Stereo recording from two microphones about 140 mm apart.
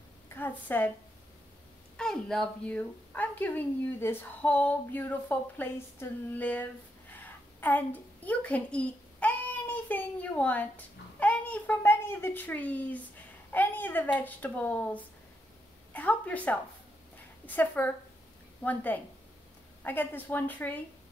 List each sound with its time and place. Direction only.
0.3 s a woman's voice: 15° left (ahead or behind)
2.0 s speech: 5° left (ahead or behind)
7.2 s a sound: 15° left (ahead or behind)
13.5 s a woman's voice: 15° left (ahead or behind)